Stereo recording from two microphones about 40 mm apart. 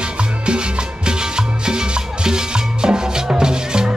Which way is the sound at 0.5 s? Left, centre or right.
Right.